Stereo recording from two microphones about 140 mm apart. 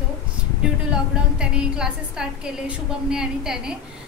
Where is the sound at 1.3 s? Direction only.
5° right (ahead or behind).